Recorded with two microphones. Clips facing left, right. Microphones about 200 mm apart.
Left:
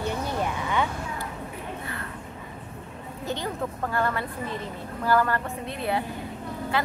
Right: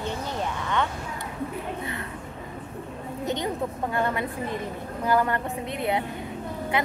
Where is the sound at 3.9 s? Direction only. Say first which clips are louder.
Right 1 dB; 20° right (ahead or behind).